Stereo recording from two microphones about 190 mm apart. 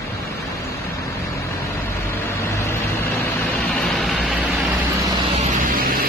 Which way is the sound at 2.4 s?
15° left (ahead or behind).